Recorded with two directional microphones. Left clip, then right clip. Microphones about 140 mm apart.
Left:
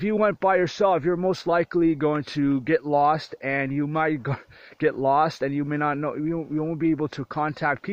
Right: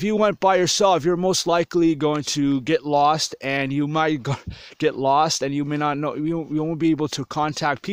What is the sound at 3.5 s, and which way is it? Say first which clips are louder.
Speech: right 1 dB; 60° right (ahead or behind).